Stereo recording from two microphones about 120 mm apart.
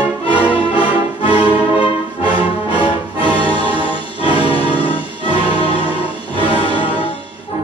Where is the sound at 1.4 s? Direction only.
40° right (ahead or behind).